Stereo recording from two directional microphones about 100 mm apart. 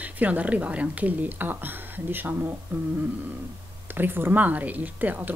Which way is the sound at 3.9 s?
20° right (ahead or behind).